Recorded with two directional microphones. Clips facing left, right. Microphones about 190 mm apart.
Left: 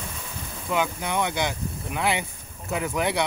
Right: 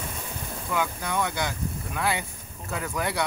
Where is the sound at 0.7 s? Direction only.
20° left (ahead or behind).